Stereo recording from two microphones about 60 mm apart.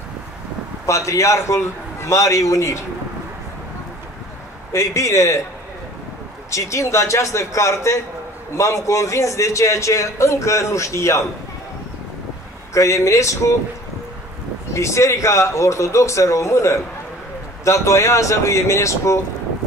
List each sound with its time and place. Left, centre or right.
0.8 s a man's voice: left
4.7 s a man's voice: left
6.5 s a man's voice: left
12.7 s a man's voice: left
14.7 s a man's voice: left